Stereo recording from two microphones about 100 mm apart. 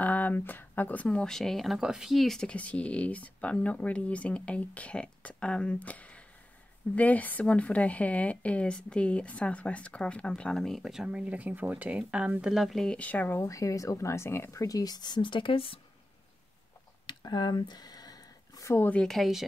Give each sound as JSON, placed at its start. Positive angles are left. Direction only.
{"t": 0.0, "sound": "a woman's voice", "side_deg": 15}
{"t": 13.4, "sound": "speech", "side_deg": 35}
{"t": 17.0, "sound": "a sound", "side_deg": 50}
{"t": 18.7, "sound": "speech", "side_deg": 20}
{"t": 18.9, "sound": "a woman's voice", "side_deg": 5}